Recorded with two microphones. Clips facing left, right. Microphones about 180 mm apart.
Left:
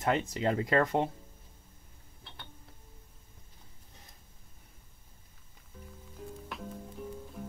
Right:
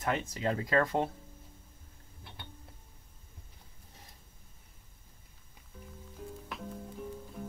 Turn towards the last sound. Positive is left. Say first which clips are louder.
# even
turn(degrees=0)  # may be behind; listen again after turning